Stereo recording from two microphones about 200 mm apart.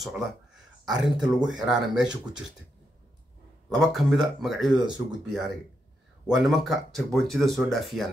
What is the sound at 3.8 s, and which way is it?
Speech, centre (ahead or behind).